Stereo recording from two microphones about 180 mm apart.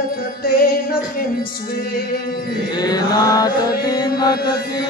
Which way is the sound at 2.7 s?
20° left (ahead or behind).